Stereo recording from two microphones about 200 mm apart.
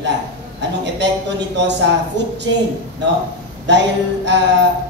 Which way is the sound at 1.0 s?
60° right (ahead or behind).